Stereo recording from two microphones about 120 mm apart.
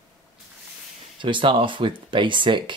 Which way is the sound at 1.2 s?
45° right (ahead or behind).